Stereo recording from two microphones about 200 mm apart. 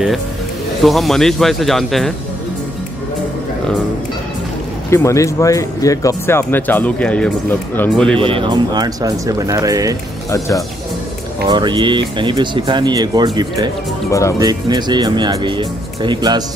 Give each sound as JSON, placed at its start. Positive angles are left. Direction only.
{"t": 0.8, "sound": "speech", "side_deg": 0}
{"t": 4.9, "sound": "speech", "side_deg": 15}
{"t": 8.2, "sound": "speech", "side_deg": -25}
{"t": 11.4, "sound": "speech", "side_deg": -20}